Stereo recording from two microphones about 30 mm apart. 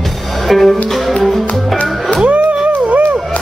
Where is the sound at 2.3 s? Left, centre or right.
Right.